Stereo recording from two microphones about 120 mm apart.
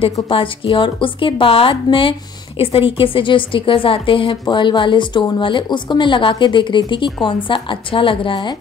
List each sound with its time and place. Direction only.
0.3 s a woman's voice: 45° left (ahead or behind)